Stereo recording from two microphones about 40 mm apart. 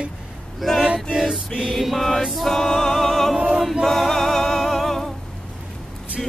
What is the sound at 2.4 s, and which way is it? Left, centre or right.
Music, centre.